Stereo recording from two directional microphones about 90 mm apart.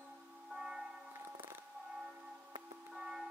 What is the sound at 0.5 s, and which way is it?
Music, 5° right (ahead or behind).